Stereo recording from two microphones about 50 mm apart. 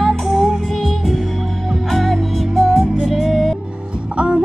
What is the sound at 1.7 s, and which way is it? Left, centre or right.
Music, centre.